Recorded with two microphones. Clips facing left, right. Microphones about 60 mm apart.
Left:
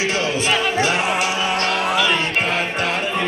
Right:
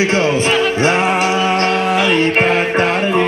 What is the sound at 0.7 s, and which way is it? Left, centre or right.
Music, right.